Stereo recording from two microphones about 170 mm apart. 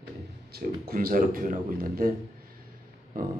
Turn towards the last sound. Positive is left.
turn(degrees=-60)  # may be behind; listen again after turning